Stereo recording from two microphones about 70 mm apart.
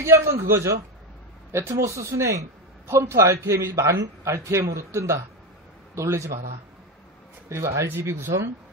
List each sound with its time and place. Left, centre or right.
0.0 s a man's voice: right
7.4 s speech: right